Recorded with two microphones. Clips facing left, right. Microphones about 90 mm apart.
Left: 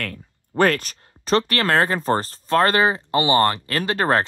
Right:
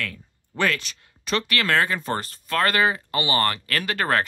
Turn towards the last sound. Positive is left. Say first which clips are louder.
# left 4 dB
turn(degrees=30)  # may be behind; listen again after turning